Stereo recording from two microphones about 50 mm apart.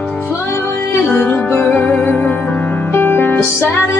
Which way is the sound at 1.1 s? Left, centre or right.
Left.